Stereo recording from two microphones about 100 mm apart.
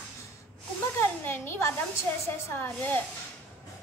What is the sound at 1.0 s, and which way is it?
Speech, 25° left (ahead or behind).